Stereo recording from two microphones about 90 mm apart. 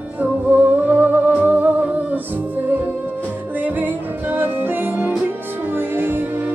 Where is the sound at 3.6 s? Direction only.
20° right (ahead or behind).